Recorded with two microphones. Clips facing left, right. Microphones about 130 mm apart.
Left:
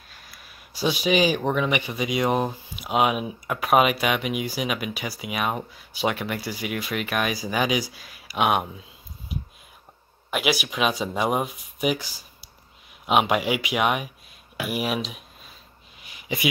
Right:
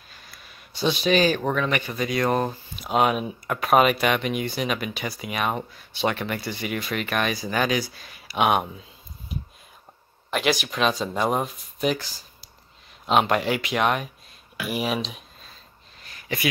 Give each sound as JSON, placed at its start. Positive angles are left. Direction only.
{"t": 0.1, "sound": "speech", "side_deg": 5}
{"t": 10.3, "sound": "speech", "side_deg": 10}
{"t": 16.0, "sound": "a sound", "side_deg": 10}